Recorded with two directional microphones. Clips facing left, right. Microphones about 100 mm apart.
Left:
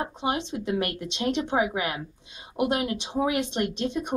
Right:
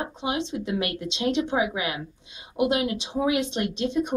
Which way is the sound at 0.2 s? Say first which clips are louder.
Right 1 dB; 45° left (ahead or behind).